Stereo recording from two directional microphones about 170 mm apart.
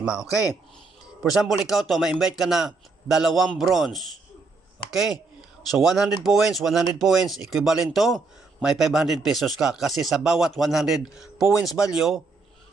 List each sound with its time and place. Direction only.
0.0 s speech: 5° right (ahead or behind)
0.3 s speech: 20° left (ahead or behind)
1.7 s speech: centre (ahead or behind)